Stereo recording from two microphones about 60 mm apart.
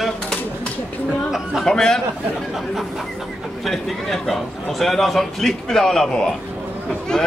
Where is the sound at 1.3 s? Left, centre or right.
Centre.